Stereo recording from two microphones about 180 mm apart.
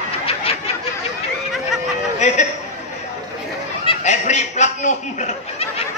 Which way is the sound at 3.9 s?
40° left (ahead or behind).